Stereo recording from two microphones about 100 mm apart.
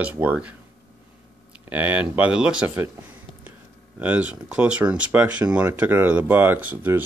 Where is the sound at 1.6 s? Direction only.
15° right (ahead or behind).